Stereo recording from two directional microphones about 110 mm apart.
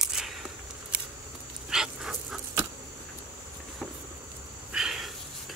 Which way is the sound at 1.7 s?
5° right (ahead or behind).